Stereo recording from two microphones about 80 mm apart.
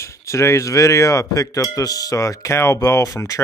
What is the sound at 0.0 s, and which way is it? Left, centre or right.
Speech, left.